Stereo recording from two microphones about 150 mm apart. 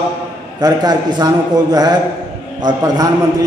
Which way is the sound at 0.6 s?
25° right (ahead or behind).